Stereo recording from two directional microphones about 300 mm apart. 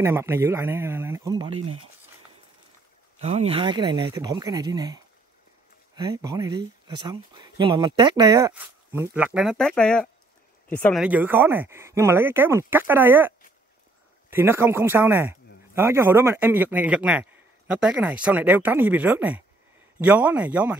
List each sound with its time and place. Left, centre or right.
0.0 s speech: centre
1.6 s speech: right
3.2 s speech: right
14.3 s speech: centre